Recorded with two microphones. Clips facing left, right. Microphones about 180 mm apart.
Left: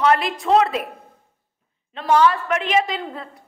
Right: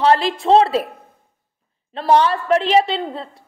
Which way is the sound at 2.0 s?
30° right (ahead or behind).